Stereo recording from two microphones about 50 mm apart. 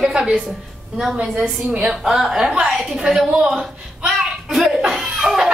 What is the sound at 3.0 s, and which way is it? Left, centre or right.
A woman's voice, centre.